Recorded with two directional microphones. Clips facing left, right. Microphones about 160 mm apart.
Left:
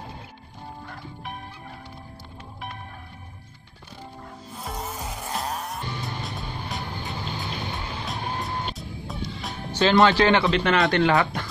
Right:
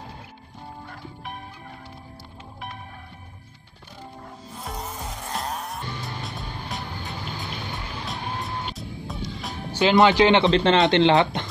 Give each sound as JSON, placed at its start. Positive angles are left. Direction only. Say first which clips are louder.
{"t": 4.6, "sound": "music", "louder": "left 1 dB", "side_deg": 0}
{"t": 8.7, "sound": "music", "louder": "even", "side_deg": 0}
{"t": 9.7, "sound": "speech", "louder": "right 1 dB", "side_deg": -15}